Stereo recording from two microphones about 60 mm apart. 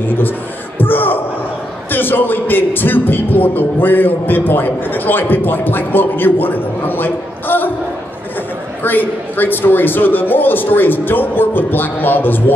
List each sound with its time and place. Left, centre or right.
0.7 s a sound: left
1.9 s speech: left
8.8 s speech: left